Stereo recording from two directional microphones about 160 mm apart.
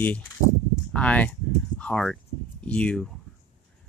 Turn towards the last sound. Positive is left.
turn(degrees=5)  # may be behind; listen again after turning